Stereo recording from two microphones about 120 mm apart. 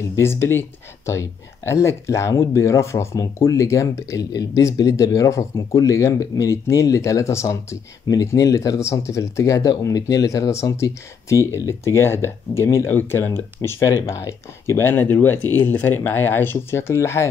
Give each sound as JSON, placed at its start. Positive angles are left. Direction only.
{"t": 0.1, "sound": "speech", "side_deg": 20}